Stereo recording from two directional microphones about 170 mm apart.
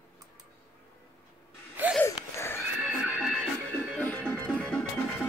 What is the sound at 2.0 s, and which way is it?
Wheeze, 15° left (ahead or behind).